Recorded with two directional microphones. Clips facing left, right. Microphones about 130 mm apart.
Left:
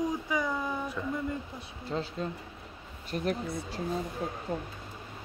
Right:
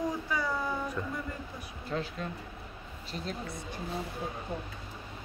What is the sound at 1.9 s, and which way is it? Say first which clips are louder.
Speech: left 2 dB; 30° left (ahead or behind).